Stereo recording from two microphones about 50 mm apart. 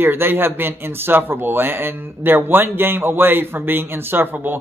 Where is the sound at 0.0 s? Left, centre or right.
Right.